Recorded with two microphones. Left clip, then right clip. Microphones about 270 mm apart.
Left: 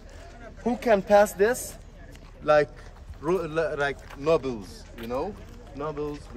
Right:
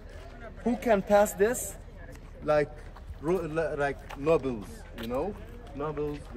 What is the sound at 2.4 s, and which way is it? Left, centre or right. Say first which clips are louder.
Speech: left 5 dB; centre.